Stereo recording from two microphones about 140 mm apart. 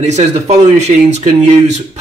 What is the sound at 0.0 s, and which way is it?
Speech, 55° right (ahead or behind).